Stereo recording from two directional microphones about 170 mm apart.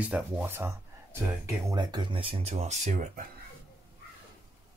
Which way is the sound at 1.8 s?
25° right (ahead or behind).